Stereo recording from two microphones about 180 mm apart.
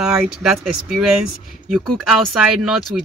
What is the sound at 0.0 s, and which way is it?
Speech, 5° right (ahead or behind).